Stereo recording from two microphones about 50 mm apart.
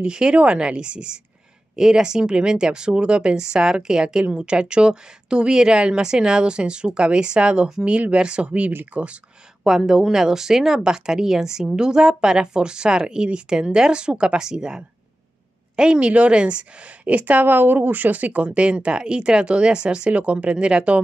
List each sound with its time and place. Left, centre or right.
0.0 s a woman's voice: centre
9.6 s a woman's voice: centre